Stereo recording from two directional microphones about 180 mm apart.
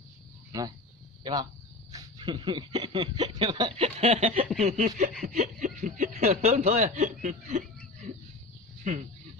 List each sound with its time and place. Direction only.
0.5 s speech: 20° right (ahead or behind); by 9.0 s 40° right (ahead or behind)